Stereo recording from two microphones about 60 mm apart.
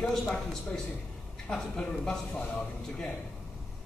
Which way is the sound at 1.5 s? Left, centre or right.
Centre.